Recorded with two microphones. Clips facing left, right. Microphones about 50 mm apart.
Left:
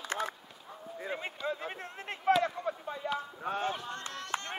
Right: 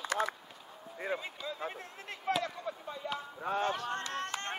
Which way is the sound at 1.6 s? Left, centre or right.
Left.